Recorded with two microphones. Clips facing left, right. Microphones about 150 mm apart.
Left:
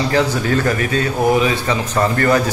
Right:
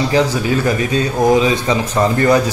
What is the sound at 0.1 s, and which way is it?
Speech, 15° right (ahead or behind).